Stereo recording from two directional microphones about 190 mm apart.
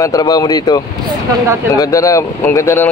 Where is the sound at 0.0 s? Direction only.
20° left (ahead or behind).